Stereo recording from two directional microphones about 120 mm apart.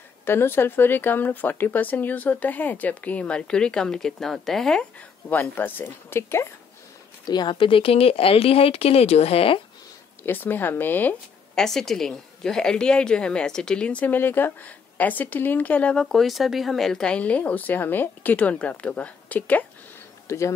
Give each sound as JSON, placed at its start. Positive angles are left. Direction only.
{"t": 0.2, "sound": "a woman's voice", "side_deg": 20}
{"t": 5.3, "sound": "speech", "side_deg": 15}
{"t": 7.2, "sound": "speech", "side_deg": 35}
{"t": 10.2, "sound": "a woman's voice", "side_deg": 15}
{"t": 11.5, "sound": "a woman's voice", "side_deg": 5}
{"t": 20.2, "sound": "speech", "side_deg": 25}